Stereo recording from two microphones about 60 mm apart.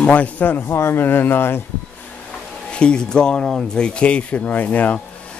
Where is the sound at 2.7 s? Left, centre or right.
Centre.